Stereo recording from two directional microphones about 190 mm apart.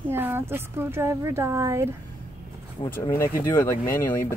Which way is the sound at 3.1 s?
15° left (ahead or behind).